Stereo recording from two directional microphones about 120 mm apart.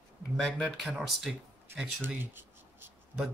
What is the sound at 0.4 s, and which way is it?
Speech, 5° left (ahead or behind).